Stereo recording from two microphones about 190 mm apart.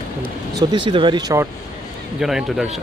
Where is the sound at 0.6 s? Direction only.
25° right (ahead or behind).